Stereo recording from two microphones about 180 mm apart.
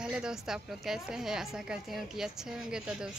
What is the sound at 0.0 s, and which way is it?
A woman's voice, 5° right (ahead or behind).